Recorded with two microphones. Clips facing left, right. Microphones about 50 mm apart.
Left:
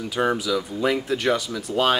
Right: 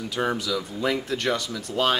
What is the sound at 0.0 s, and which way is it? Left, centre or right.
Speech, centre.